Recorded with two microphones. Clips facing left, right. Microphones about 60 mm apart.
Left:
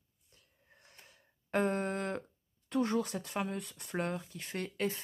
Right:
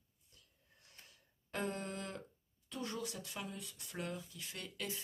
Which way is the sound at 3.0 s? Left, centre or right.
Left.